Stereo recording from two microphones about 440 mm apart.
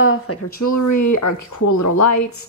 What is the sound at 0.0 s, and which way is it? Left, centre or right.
Speech, left.